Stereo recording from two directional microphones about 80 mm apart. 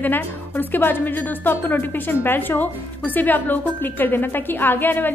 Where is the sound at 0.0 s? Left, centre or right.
Left.